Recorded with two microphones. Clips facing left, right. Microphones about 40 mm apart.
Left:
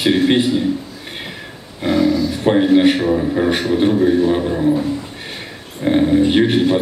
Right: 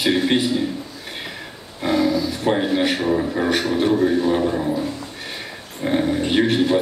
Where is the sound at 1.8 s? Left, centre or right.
Centre.